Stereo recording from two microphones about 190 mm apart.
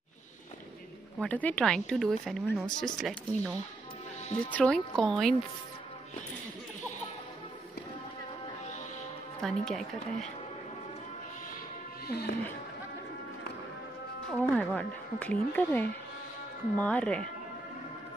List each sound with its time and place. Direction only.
1.2 s speech: 10° left (ahead or behind)
9.4 s speech: centre (ahead or behind)
12.1 s speech: 55° left (ahead or behind)
14.4 s speech: 10° left (ahead or behind)